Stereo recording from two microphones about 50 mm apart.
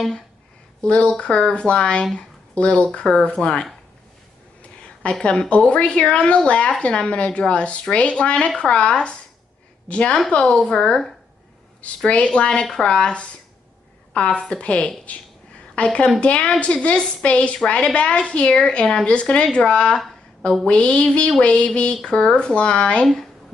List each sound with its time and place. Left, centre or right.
0.8 s a woman's voice: left
5.2 s a woman's voice: centre
12.1 s a woman's voice: left